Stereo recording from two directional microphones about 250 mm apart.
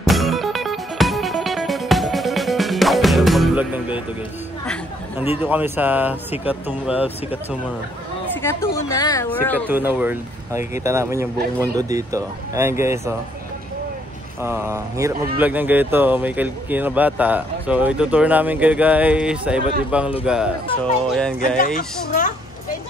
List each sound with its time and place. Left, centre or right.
0.0 s music: centre
5.4 s speech: centre
8.4 s speech: centre
9.7 s speech: centre
14.4 s speech: centre
21.5 s speech: left